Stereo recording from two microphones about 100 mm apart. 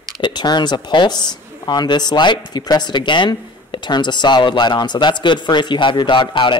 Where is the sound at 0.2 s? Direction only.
45° left (ahead or behind).